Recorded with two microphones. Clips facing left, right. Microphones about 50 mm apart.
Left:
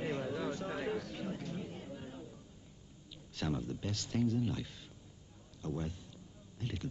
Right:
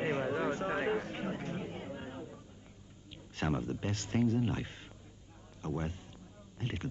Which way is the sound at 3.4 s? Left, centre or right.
Right.